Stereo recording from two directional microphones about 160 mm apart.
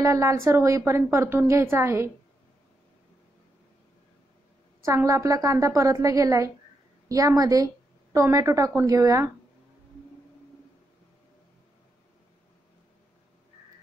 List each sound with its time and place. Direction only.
0.0 s a woman's voice: 20° right (ahead or behind)
4.8 s a woman's voice: 20° right (ahead or behind)